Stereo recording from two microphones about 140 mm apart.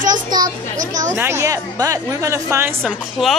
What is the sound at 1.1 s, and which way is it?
A woman's voice, 20° right (ahead or behind).